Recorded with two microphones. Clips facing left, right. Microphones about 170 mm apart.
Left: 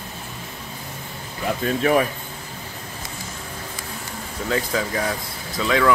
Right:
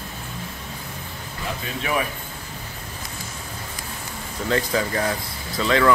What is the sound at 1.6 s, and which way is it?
Speech, 45° left (ahead or behind).